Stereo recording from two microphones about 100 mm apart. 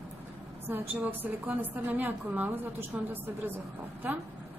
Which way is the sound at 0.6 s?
20° right (ahead or behind).